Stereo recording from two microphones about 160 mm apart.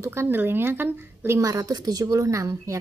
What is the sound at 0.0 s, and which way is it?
A woman's voice, 15° right (ahead or behind).